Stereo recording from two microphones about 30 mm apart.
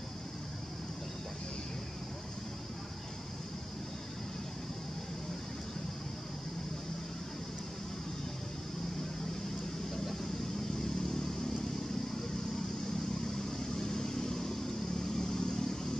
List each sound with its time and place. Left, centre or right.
11.0 s vehicle: centre
13.5 s vehicle: centre